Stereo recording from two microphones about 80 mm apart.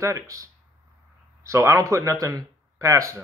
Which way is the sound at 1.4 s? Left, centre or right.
Right.